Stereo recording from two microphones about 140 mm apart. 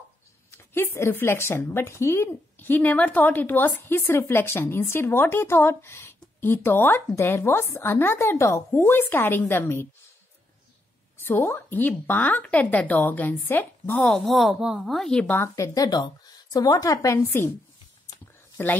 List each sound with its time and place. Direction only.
0.5 s speech: 15° left (ahead or behind)
11.2 s speech: 15° left (ahead or behind)
15.3 s speech: 20° left (ahead or behind)
18.6 s speech: 15° left (ahead or behind)